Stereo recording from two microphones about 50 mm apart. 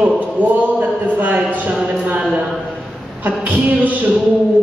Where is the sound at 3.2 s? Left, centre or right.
Right.